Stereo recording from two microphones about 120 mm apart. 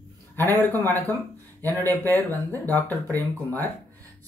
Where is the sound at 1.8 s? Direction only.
20° left (ahead or behind).